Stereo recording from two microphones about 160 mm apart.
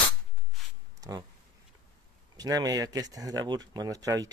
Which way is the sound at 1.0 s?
25° right (ahead or behind).